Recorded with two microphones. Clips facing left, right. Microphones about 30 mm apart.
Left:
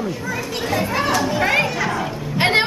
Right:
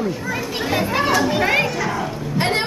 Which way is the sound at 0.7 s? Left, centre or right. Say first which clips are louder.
Right 1 dB; centre.